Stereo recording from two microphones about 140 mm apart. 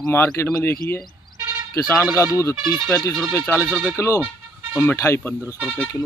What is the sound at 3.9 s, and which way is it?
Speech, 20° left (ahead or behind).